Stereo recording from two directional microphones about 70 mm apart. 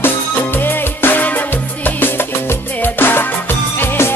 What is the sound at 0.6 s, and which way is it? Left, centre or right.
Music, left.